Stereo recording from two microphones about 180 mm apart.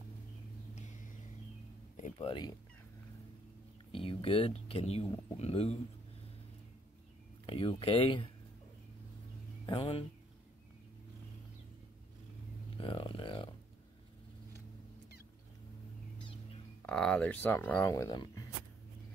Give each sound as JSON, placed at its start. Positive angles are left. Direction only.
{"t": 0.7, "sound": "a sound", "side_deg": 45}
{"t": 2.0, "sound": "speech", "side_deg": 40}
{"t": 3.9, "sound": "speech", "side_deg": 30}
{"t": 7.4, "sound": "speech", "side_deg": 30}
{"t": 9.7, "sound": "speech", "side_deg": 30}
{"t": 12.7, "sound": "speech", "side_deg": 30}
{"t": 16.8, "sound": "speech", "side_deg": 5}